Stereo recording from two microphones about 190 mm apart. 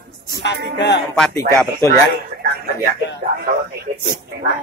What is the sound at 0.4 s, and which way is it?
Music, 65° left (ahead or behind).